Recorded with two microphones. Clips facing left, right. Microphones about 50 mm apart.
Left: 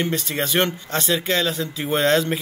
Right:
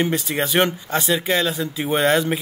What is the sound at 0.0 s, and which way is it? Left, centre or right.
Speech, centre.